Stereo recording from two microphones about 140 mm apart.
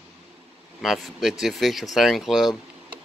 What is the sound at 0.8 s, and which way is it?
Speech, centre (ahead or behind).